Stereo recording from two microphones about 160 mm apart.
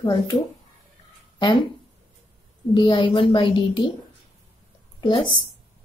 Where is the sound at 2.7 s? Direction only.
30° left (ahead or behind).